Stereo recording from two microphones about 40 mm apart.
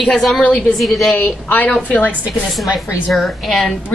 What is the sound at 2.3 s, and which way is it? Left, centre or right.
A woman's voice, centre.